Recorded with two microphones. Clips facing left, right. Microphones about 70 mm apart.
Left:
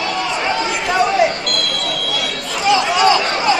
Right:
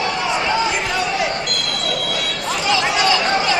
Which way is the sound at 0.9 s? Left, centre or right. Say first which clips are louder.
Left 6 dB; left.